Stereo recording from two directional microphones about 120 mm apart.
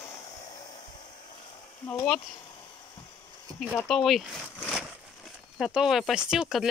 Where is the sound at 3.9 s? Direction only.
Centre (ahead or behind).